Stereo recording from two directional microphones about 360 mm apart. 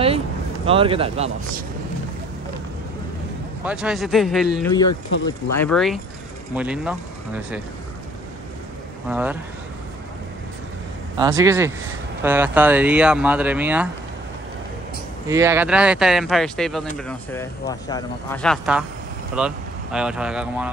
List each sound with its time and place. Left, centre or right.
0.7 s speech: centre
3.6 s speech: centre
9.1 s speech: centre
11.1 s speech: centre
15.2 s speech: centre